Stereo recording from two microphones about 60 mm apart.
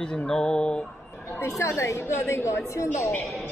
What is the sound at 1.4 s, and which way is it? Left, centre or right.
A woman's voice, left.